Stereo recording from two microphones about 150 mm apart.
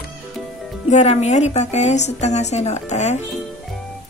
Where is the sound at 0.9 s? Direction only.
50° left (ahead or behind).